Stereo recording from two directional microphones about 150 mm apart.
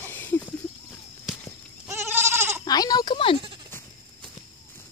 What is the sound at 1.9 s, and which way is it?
Goat, 15° right (ahead or behind).